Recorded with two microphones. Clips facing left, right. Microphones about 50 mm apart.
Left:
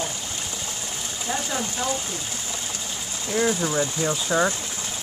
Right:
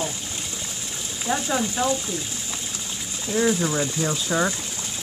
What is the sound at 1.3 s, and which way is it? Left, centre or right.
Speech, centre.